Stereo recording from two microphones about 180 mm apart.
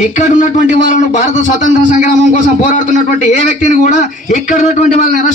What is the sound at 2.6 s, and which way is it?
A man's voice, 45° left (ahead or behind).